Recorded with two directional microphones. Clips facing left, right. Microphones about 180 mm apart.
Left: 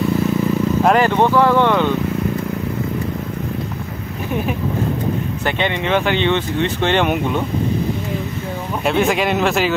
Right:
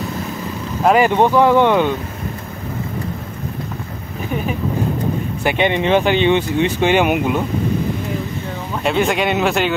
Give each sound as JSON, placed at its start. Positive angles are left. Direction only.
{"t": 0.8, "sound": "speech", "side_deg": -10}
{"t": 5.4, "sound": "speech", "side_deg": -15}
{"t": 8.8, "sound": "speech", "side_deg": 0}